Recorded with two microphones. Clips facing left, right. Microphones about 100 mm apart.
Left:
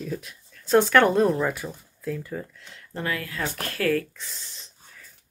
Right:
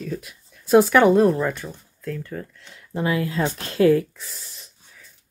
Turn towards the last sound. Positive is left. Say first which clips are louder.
# even
turn(degrees=-5)  # may be behind; listen again after turning